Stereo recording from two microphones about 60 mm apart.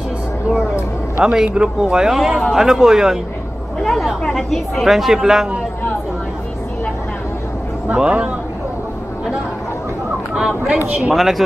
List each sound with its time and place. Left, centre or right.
1.2 s speech: centre
3.8 s chatter: centre
4.4 s a woman's voice: centre
7.9 s a man's voice: centre
10.3 s speech: centre
11.0 s a woman's voice: centre